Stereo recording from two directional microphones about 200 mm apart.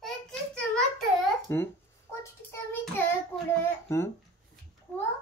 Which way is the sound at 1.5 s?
10° left (ahead or behind).